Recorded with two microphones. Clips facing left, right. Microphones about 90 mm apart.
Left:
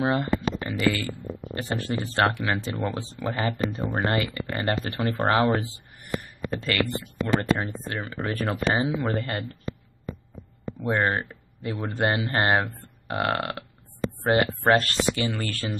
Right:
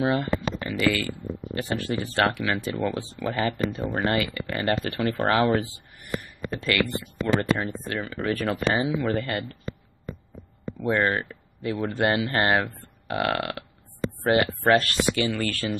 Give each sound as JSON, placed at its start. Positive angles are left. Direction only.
{"t": 0.0, "sound": "speech", "side_deg": 30}
{"t": 10.9, "sound": "speech", "side_deg": 25}